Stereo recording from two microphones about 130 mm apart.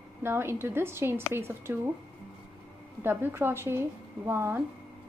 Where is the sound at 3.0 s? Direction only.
15° right (ahead or behind).